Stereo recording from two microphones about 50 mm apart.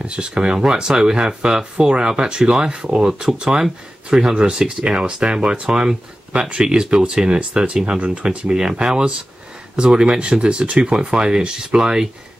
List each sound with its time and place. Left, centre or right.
0.0 s speech: right